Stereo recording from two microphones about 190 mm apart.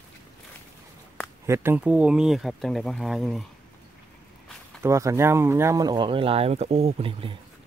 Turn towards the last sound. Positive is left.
turn(degrees=-30)  # may be behind; listen again after turning